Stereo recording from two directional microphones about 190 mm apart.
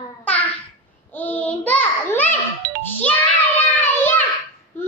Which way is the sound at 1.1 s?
10° left (ahead or behind).